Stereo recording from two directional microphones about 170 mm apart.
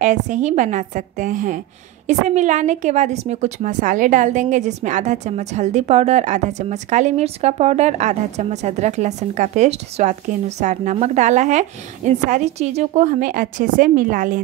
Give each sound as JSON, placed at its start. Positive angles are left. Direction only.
{"t": 0.0, "sound": "a woman's voice", "side_deg": -45}